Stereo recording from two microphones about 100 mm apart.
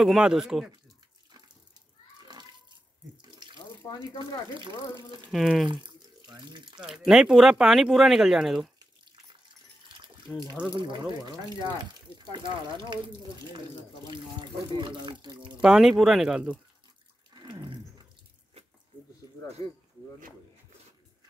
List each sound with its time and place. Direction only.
0.0 s speech: 5° right (ahead or behind)
3.2 s water: 45° right (ahead or behind)
5.3 s speech: centre (ahead or behind)
5.7 s a sound: 50° right (ahead or behind)
6.4 s speech: 50° right (ahead or behind)
6.8 s speech: 5° right (ahead or behind)
10.3 s speech: 15° left (ahead or behind)
10.7 s speech: 55° right (ahead or behind)
15.6 s speech: 5° right (ahead or behind)
17.3 s a sound: 45° right (ahead or behind)